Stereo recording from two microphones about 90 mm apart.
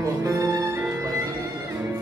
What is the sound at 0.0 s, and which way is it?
Music, 35° right (ahead or behind).